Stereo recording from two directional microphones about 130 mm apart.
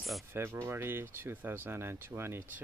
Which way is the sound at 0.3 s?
20° right (ahead or behind).